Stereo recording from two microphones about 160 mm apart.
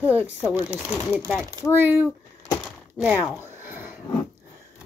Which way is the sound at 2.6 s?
5° right (ahead or behind).